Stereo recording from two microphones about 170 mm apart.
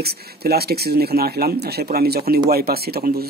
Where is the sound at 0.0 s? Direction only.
65° right (ahead or behind).